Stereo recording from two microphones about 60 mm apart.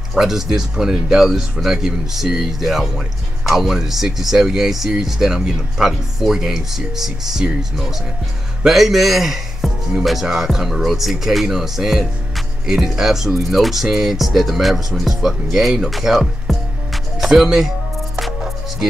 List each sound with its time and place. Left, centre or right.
0.1 s a man's voice: centre
15.7 s music: centre